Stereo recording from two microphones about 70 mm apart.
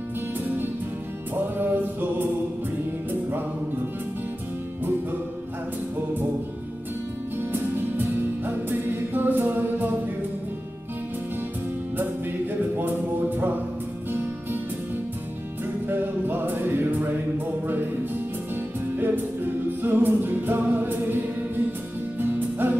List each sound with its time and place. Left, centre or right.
1.3 s music: right
7.5 s music: right
15.9 s music: right
18.9 s music: right
22.2 s music: right